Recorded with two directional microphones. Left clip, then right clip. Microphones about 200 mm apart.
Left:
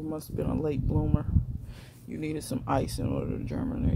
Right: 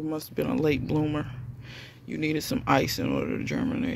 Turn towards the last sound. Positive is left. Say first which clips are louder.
# right 4 dB
turn(degrees=-15)  # may be behind; listen again after turning